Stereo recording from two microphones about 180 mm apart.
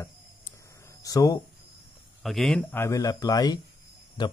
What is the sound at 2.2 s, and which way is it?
Speech, centre (ahead or behind).